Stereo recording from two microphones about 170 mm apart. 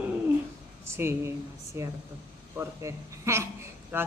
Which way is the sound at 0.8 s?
15° right (ahead or behind).